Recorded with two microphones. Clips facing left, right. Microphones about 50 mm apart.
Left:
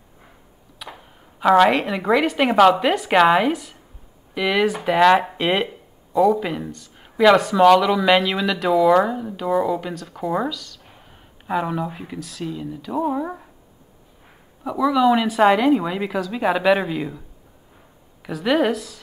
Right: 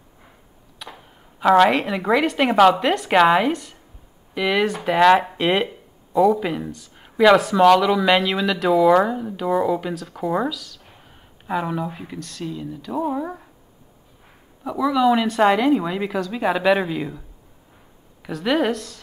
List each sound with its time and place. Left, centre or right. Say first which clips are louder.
0.7 s a woman's voice: left 1 dB; centre
14.6 s speech: left 1 dB; centre
18.2 s speech: left 1 dB; centre